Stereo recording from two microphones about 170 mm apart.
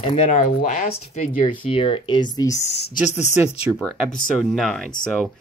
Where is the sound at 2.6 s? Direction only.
90° left.